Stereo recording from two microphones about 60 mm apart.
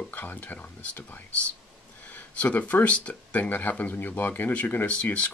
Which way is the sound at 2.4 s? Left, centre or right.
Left.